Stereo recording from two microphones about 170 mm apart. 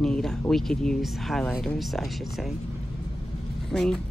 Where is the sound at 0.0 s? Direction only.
5° left (ahead or behind).